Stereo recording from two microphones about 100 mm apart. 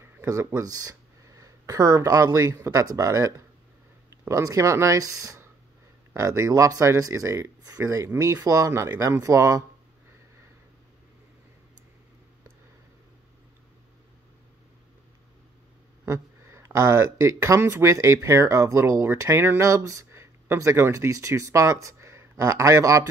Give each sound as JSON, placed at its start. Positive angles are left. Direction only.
{"t": 0.0, "sound": "a sound", "side_deg": -25}
{"t": 0.6, "sound": "speech", "side_deg": -35}
{"t": 16.1, "sound": "speech", "side_deg": -30}